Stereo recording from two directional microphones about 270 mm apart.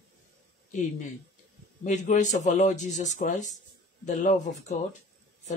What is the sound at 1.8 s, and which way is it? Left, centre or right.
Speech, left.